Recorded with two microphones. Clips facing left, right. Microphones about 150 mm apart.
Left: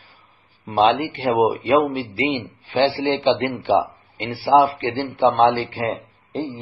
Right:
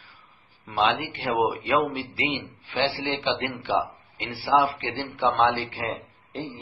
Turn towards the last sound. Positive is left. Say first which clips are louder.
# left 6 dB
turn(degrees=35)  # may be behind; listen again after turning